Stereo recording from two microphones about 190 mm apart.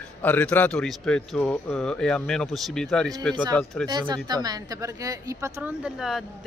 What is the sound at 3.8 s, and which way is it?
A man's voice, 20° right (ahead or behind).